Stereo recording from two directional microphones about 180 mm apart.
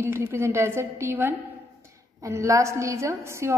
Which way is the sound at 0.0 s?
15° right (ahead or behind).